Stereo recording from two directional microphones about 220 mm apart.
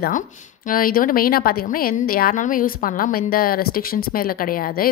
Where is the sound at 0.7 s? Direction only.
40° left (ahead or behind).